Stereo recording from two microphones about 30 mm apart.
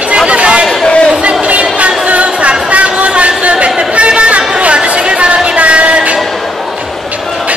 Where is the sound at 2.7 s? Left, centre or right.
Right.